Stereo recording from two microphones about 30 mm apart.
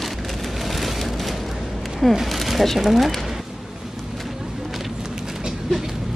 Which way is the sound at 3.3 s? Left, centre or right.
Centre.